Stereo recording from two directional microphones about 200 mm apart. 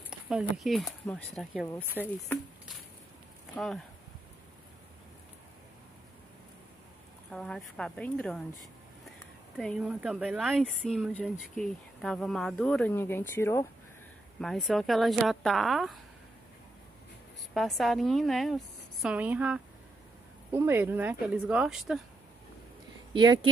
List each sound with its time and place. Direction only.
0.1 s speech: 5° right (ahead or behind)
1.7 s speech: 10° left (ahead or behind)
3.5 s speech: centre (ahead or behind)
7.2 s speech: centre (ahead or behind)
9.6 s speech: centre (ahead or behind)
14.4 s speech: centre (ahead or behind)
17.6 s speech: centre (ahead or behind)
23.1 s speech: 25° right (ahead or behind)